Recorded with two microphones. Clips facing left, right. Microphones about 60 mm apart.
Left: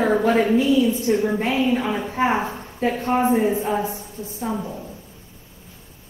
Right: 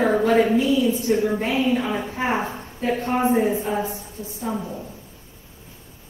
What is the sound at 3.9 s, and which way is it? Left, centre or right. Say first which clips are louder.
Speech: left 1 dB; left.